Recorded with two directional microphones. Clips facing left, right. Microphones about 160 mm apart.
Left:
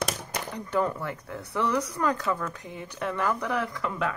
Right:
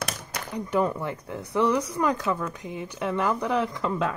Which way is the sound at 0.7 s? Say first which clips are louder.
Right 2 dB; 15° right (ahead or behind).